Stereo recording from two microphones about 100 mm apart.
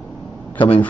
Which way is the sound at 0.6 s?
55° left (ahead or behind).